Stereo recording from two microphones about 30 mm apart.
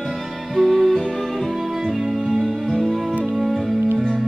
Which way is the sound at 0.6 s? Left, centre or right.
Centre.